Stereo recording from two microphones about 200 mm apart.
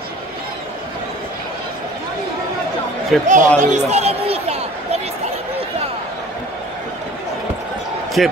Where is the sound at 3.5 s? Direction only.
35° right (ahead or behind).